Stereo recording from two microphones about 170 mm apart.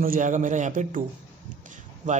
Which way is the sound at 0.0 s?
50° right (ahead or behind).